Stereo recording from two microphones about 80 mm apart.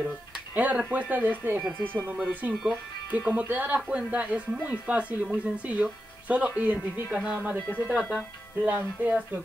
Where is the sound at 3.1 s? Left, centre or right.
Centre.